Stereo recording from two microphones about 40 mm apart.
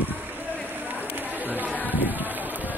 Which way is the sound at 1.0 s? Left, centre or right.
Right.